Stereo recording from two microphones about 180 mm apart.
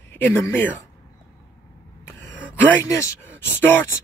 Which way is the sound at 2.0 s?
10° left (ahead or behind).